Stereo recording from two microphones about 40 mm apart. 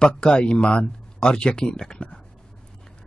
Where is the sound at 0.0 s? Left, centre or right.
Left.